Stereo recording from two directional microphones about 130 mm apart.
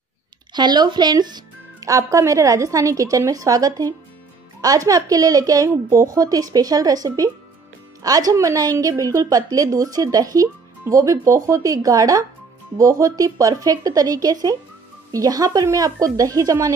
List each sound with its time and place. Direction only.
0.5 s a woman's voice: 35° right (ahead or behind)